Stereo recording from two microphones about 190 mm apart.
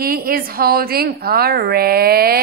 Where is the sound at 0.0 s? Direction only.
50° right (ahead or behind).